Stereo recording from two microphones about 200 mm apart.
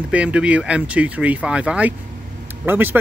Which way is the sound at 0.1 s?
5° right (ahead or behind).